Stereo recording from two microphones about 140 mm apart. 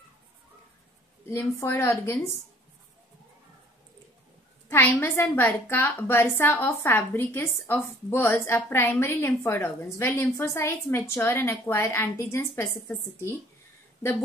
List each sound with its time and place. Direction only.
1.3 s a woman's voice: 20° left (ahead or behind)
4.6 s a sound: 15° left (ahead or behind)
5.0 s a woman's voice: 15° left (ahead or behind)